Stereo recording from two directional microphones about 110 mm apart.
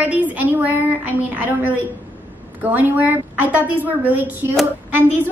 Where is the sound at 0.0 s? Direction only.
15° right (ahead or behind).